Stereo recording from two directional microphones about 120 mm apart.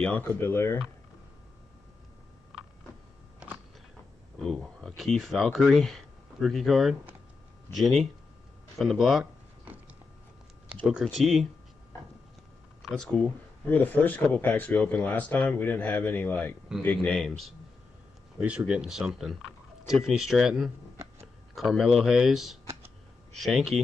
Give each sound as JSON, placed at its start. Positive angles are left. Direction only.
{"t": 0.0, "sound": "speech", "side_deg": 15}
{"t": 4.4, "sound": "speech", "side_deg": 0}
{"t": 8.7, "sound": "a sound", "side_deg": -5}
{"t": 10.9, "sound": "speech", "side_deg": -5}
{"t": 12.9, "sound": "speech", "side_deg": 5}
{"t": 18.4, "sound": "speech", "side_deg": -10}